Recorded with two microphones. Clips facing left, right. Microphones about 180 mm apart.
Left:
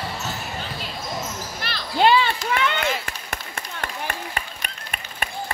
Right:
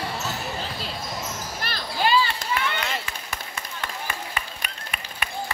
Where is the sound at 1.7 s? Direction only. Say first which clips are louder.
Left 1 dB; 45° right (ahead or behind).